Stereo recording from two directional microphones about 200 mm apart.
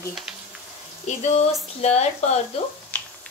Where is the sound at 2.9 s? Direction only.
10° left (ahead or behind).